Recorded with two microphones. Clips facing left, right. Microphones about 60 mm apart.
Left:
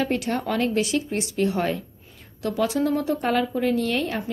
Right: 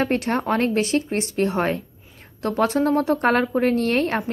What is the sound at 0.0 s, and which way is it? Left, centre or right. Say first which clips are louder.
A woman's voice: right 3 dB; right.